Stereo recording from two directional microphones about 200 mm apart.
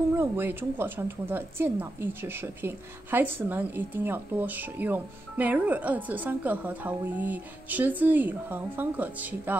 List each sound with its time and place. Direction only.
0.2 s speech: 10° right (ahead or behind)